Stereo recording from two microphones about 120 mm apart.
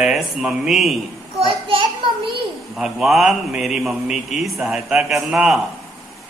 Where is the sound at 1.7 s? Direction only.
45° right (ahead or behind).